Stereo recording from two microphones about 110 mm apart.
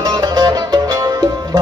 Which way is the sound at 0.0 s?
40° right (ahead or behind).